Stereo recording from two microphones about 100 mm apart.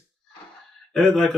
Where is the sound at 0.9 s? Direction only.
5° left (ahead or behind).